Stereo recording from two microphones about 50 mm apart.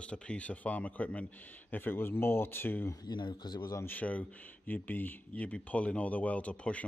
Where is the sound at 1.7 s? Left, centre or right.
Left.